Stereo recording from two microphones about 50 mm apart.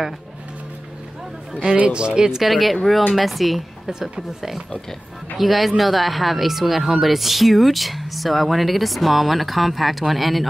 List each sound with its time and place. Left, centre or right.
1.5 s speech: right
2.4 s speech: centre